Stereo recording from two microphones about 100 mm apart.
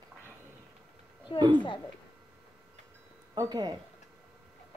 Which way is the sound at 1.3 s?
60° left (ahead or behind).